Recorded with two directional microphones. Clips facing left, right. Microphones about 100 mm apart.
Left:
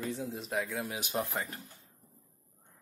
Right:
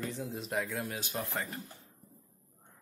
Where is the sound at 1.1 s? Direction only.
20° left (ahead or behind).